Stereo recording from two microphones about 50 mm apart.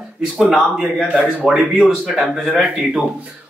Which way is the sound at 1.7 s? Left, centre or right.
Centre.